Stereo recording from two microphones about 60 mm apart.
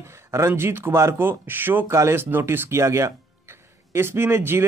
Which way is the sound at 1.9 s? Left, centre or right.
Right.